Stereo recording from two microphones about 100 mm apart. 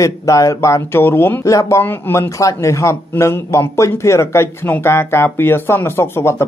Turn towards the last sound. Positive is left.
turn(degrees=25)  # may be behind; listen again after turning